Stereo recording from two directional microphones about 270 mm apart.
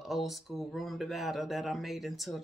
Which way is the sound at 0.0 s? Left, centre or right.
Centre.